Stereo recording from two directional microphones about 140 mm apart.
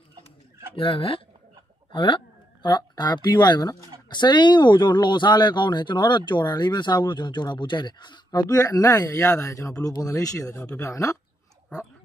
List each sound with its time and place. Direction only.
0.7 s speech: 40° left (ahead or behind); by 11.1 s 20° left (ahead or behind)